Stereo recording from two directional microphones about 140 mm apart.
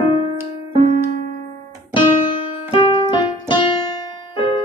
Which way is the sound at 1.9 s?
40° left (ahead or behind).